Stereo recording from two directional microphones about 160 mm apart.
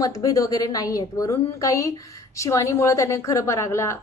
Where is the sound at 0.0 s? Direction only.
20° left (ahead or behind).